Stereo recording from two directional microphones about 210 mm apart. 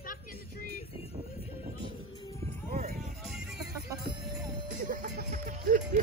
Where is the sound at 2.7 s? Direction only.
40° right (ahead or behind).